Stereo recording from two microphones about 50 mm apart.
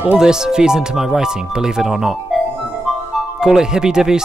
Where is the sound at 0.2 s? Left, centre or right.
Centre.